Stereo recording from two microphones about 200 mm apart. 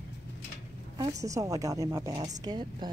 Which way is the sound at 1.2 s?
15° right (ahead or behind).